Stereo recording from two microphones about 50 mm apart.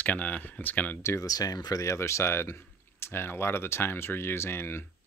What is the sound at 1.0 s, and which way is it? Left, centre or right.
Speech, left.